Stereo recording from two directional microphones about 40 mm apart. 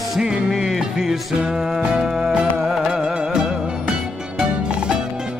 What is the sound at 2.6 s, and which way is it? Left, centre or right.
Music, centre.